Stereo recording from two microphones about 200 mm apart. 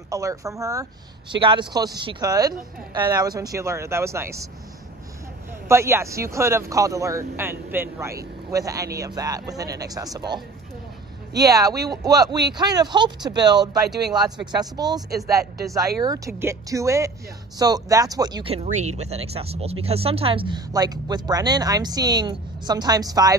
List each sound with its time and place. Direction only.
0.1 s speech: 15° right (ahead or behind)
5.7 s speech: 15° right (ahead or behind)